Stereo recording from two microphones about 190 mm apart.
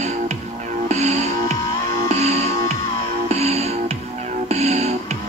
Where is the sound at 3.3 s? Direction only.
35° right (ahead or behind).